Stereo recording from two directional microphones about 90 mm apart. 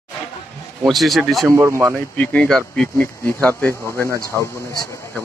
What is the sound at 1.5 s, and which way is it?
Speech, 30° right (ahead or behind).